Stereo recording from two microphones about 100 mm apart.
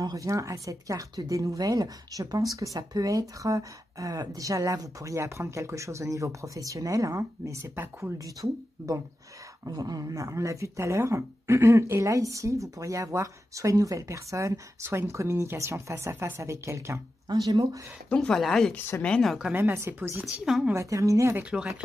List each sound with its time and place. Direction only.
0.0 s speech: 35° right (ahead or behind)
17.3 s speech: 45° right (ahead or behind)
18.1 s speech: 5° left (ahead or behind)
18.7 s speech: 20° left (ahead or behind)
19.0 s speech: 10° left (ahead or behind)
19.5 s speech: 25° right (ahead or behind)
20.7 s speech: 30° right (ahead or behind)
21.5 s speech: 5° right (ahead or behind)